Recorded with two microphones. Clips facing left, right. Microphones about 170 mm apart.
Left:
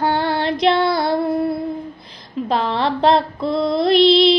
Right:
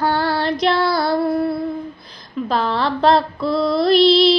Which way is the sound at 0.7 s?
25° left (ahead or behind).